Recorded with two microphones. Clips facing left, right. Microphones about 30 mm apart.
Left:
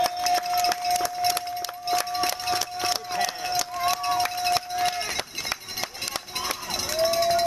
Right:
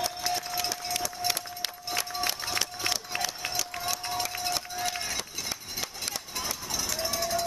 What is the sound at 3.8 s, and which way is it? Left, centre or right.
Run, left.